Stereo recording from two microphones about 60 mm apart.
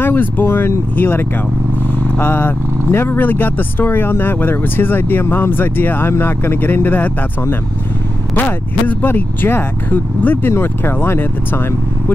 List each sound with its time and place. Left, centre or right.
0.0 s speech: left